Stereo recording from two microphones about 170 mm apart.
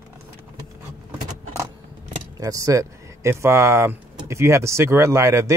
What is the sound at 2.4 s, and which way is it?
A man's voice, 20° right (ahead or behind).